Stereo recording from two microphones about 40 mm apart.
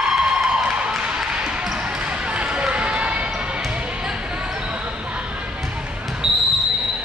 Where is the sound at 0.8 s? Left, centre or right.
Right.